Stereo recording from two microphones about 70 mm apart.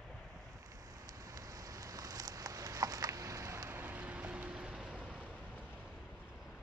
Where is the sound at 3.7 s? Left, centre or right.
Right.